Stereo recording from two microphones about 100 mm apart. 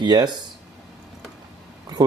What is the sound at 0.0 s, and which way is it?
Speech, 45° right (ahead or behind).